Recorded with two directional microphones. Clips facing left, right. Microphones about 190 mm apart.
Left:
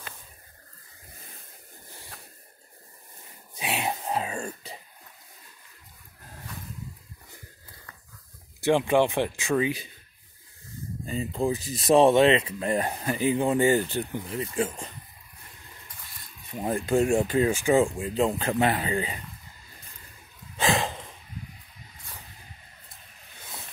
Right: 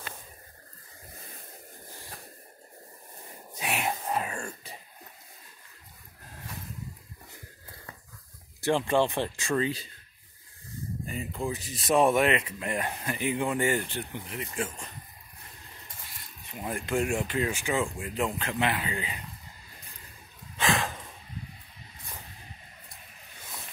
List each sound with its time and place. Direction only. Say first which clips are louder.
3.5 s throat clearing: left 1 dB; 25° left (ahead or behind)
8.6 s speech: left 3 dB; 15° left (ahead or behind)
11.1 s speech: left 7 dB; 30° left (ahead or behind)
16.7 s speech: left 6 dB; 35° left (ahead or behind)
20.5 s a sound: left 3 dB; 30° left (ahead or behind)